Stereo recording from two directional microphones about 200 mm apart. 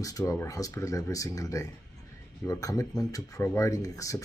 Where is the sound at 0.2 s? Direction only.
15° left (ahead or behind).